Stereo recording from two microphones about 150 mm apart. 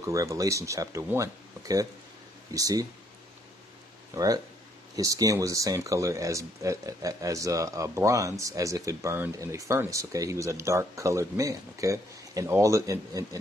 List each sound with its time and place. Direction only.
0.0 s speech: 20° right (ahead or behind)
4.1 s speech: 25° right (ahead or behind)